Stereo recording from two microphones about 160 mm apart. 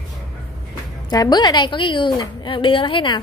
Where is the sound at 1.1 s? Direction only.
25° left (ahead or behind).